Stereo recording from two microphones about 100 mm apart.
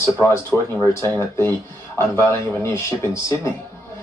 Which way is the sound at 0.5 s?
20° left (ahead or behind).